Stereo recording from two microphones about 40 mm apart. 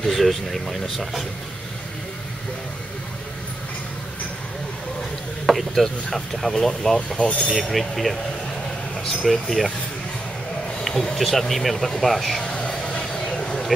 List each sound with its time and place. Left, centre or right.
0.0 s speech: centre
5.5 s speech: centre
9.2 s speech: centre
10.8 s speech: centre
12.4 s vehicle: centre